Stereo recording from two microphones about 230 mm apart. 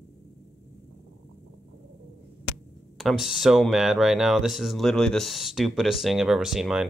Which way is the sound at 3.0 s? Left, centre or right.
Centre.